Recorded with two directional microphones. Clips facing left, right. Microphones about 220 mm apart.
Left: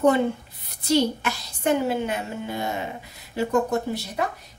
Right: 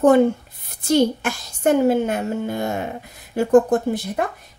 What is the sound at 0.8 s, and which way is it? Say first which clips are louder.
A woman's voice: right 4 dB; 50° right (ahead or behind).